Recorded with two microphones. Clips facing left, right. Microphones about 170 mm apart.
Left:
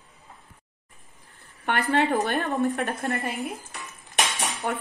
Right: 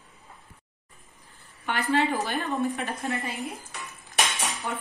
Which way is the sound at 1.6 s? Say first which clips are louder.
Left 2 dB; 60° left (ahead or behind).